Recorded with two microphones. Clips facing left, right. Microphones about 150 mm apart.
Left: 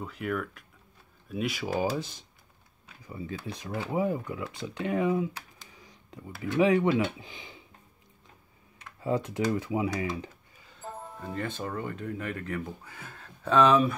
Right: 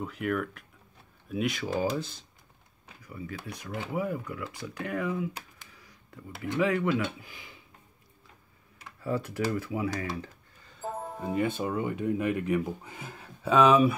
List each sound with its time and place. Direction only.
0.0 s speech: centre (ahead or behind); by 2.1 s 15° left (ahead or behind)
3.0 s speech: 25° left (ahead or behind)
5.8 s a sound: 20° left (ahead or behind)
6.6 s speech: 20° left (ahead or behind)
9.0 s speech: 20° left (ahead or behind)
10.6 s music: centre (ahead or behind)
11.1 s speech: 10° right (ahead or behind)